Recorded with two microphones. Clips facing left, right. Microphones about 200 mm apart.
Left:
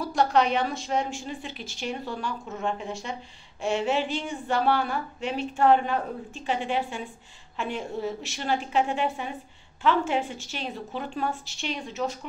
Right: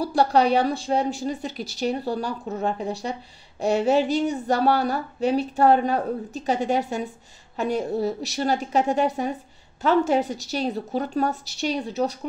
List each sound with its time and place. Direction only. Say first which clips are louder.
0.0 s a woman's voice: right 3 dB; 35° right (ahead or behind)